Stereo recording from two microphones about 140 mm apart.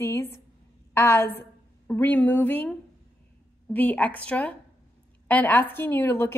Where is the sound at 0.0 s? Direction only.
20° left (ahead or behind).